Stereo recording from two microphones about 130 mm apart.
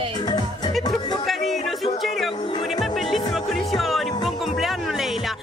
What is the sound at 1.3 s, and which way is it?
Music, centre (ahead or behind).